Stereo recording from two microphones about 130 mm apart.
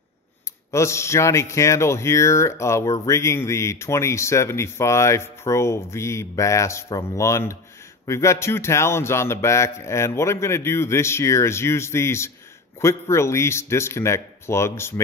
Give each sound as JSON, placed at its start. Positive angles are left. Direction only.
{"t": 0.7, "sound": "speech", "side_deg": 20}